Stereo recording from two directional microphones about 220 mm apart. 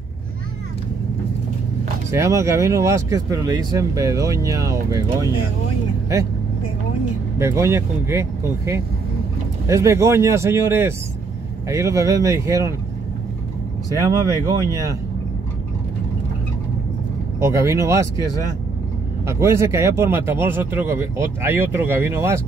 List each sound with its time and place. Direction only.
2.0 s speech: 15° right (ahead or behind)
7.3 s speech: 15° right (ahead or behind)
13.9 s speech: 15° right (ahead or behind)
17.4 s speech: 15° right (ahead or behind)
19.2 s speech: 15° right (ahead or behind)